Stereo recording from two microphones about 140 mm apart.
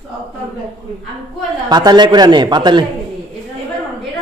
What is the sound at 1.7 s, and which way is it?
A woman's voice, 30° right (ahead or behind).